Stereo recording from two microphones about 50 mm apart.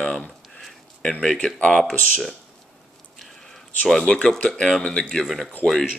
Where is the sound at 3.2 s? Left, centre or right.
Centre.